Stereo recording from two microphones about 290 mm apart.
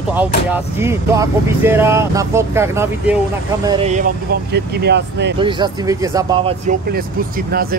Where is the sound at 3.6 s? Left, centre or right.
Right.